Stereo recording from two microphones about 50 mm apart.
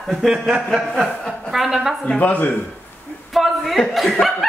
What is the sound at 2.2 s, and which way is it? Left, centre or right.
Speech, left.